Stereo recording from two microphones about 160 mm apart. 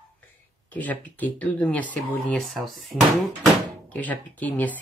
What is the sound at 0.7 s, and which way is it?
Speech, 10° left (ahead or behind).